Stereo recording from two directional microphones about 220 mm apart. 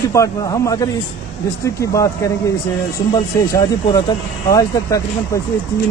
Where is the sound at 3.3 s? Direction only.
15° left (ahead or behind).